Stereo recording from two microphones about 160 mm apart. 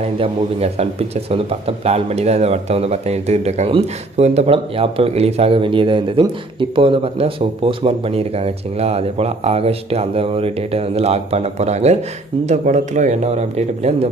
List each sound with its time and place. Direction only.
0.2 s a man's voice: 40° right (ahead or behind)